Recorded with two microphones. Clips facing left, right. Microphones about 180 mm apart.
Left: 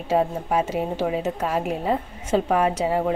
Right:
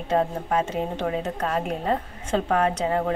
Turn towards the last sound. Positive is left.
turn(degrees=10)  # may be behind; listen again after turning